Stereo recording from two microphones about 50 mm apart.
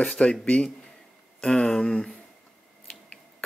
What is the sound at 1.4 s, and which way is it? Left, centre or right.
Speech, centre.